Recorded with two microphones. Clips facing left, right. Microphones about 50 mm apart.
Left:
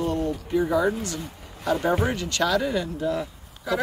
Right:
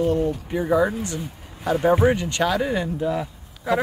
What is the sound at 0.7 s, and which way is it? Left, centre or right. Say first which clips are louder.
Speech: right 3 dB; right.